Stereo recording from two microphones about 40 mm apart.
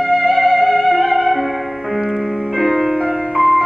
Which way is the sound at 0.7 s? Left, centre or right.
Left.